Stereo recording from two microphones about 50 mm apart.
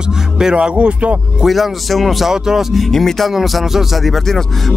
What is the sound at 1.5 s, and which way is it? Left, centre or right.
Speech, centre.